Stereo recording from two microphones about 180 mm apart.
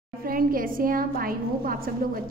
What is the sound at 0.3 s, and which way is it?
A woman's voice, 50° right (ahead or behind).